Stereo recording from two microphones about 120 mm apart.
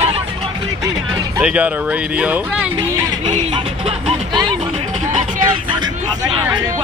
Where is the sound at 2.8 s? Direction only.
40° right (ahead or behind).